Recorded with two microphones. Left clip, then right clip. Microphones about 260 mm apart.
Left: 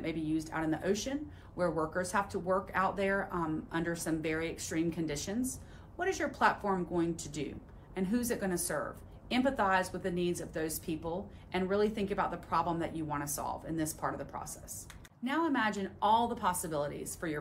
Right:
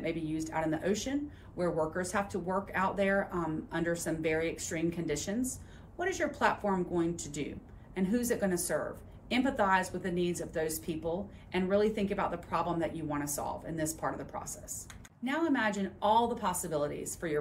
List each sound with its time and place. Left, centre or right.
0.0 s speech: centre